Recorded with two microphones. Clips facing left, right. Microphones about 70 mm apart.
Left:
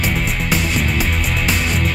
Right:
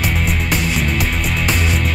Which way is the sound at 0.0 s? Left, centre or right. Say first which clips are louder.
Even; centre.